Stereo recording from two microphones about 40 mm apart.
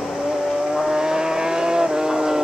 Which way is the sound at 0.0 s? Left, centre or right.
Centre.